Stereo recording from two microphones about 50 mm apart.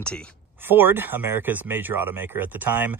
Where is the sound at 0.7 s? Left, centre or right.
Right.